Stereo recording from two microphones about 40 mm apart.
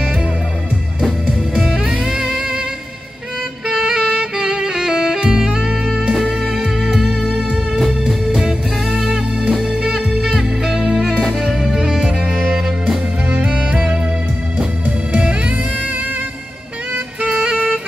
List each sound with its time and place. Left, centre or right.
1.2 s music: right
3.6 s saxophone: centre
6.2 s music: centre
12.1 s music: right
12.6 s music: centre
13.4 s music: right
17.4 s music: right